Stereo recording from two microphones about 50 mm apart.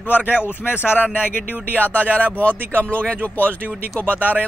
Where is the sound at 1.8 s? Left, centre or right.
Left.